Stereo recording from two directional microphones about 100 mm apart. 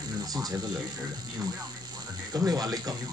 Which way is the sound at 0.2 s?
40° right (ahead or behind).